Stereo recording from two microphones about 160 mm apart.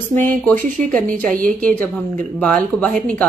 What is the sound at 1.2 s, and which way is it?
Speech, 55° right (ahead or behind).